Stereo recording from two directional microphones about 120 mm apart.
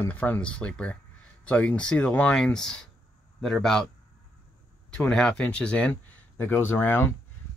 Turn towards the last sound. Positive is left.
turn(degrees=20)  # may be behind; listen again after turning